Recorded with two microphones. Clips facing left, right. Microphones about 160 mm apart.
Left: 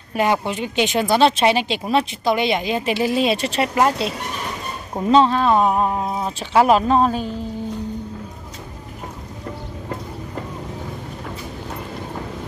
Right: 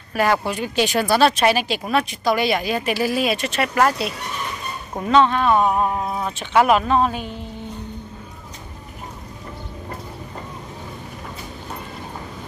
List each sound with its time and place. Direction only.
0.1 s speech: 20° left (ahead or behind)
5.1 s speech: 30° left (ahead or behind)